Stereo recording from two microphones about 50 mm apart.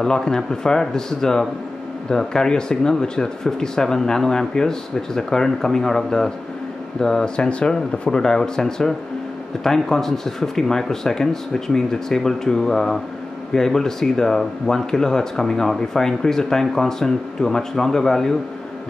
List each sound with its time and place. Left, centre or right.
0.0 s speech: centre